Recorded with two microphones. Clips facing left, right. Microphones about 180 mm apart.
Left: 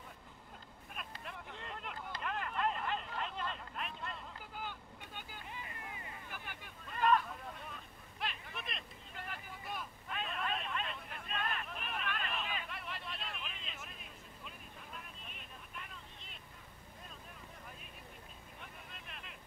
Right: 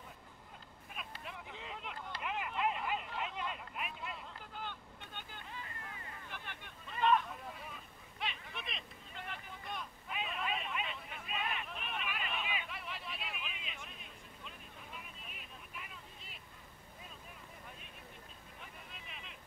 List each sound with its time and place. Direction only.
0.9 s vehicle: centre (ahead or behind)
4.6 s boat: 5° left (ahead or behind)
5.5 s hubbub: 15° left (ahead or behind)
6.2 s a sound: 5° left (ahead or behind)
18.6 s vehicle: centre (ahead or behind)